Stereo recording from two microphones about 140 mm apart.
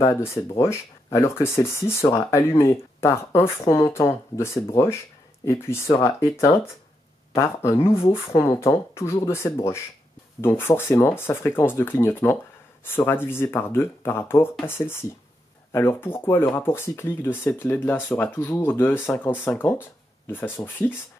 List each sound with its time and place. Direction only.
0.0 s speech: 20° left (ahead or behind)